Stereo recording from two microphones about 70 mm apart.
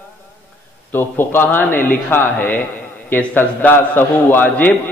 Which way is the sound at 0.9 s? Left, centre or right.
Left.